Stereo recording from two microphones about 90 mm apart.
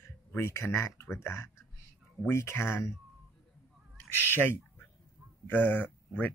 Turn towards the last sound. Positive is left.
turn(degrees=20)  # may be behind; listen again after turning